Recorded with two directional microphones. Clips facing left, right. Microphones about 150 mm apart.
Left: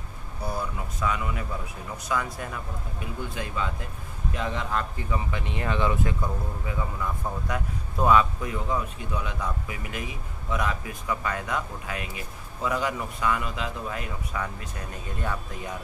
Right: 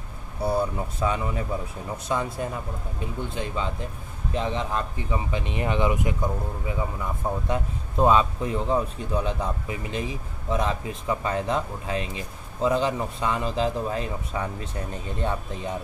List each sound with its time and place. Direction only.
0.4 s speech: 30° right (ahead or behind)